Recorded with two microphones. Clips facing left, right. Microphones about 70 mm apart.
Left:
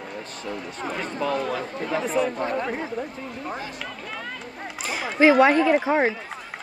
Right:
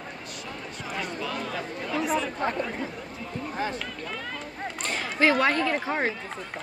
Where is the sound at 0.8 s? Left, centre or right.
Left.